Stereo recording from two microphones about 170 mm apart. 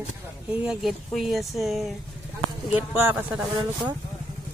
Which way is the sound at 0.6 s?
5° right (ahead or behind).